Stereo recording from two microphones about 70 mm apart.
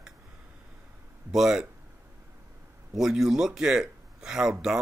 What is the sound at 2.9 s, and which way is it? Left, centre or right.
Speech, centre.